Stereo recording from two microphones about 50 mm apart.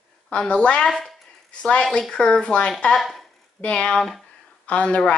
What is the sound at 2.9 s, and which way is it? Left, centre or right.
Speech, centre.